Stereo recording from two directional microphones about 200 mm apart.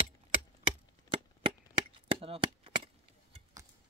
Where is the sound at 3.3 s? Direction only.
15° right (ahead or behind).